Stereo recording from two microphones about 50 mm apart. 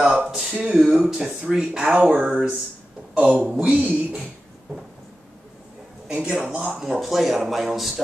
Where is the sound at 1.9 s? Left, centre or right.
Right.